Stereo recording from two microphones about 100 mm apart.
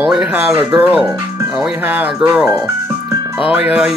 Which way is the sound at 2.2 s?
5° right (ahead or behind).